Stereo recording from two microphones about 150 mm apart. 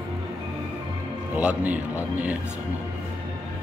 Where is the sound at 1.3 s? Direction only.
10° right (ahead or behind).